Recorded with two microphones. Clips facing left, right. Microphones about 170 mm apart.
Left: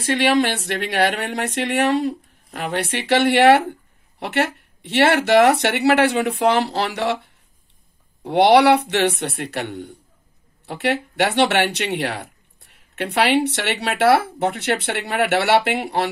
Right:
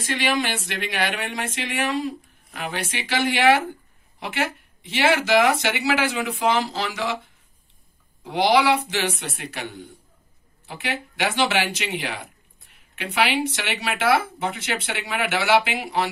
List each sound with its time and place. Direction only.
0.0 s speech: 65° left (ahead or behind)
8.2 s speech: 70° left (ahead or behind)